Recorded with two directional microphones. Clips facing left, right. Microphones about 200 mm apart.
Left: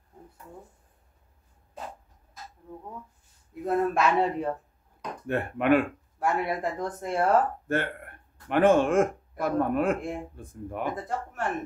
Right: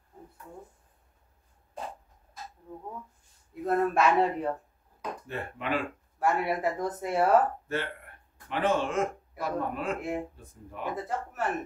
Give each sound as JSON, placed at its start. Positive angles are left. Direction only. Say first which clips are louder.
{"t": 3.6, "sound": "speech", "louder": "even", "side_deg": 0}
{"t": 5.2, "sound": "speech", "louder": "left 12 dB", "side_deg": 60}
{"t": 6.1, "sound": "speech", "louder": "even", "side_deg": 0}
{"t": 7.6, "sound": "speech", "louder": "left 4 dB", "side_deg": 55}
{"t": 9.9, "sound": "speech", "louder": "right 1 dB", "side_deg": -5}
{"t": 10.3, "sound": "speech", "louder": "left 8 dB", "side_deg": 55}
{"t": 11.0, "sound": "speech", "louder": "left 1 dB", "side_deg": -5}